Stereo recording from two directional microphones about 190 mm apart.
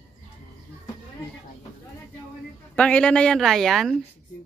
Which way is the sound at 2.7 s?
5° left (ahead or behind).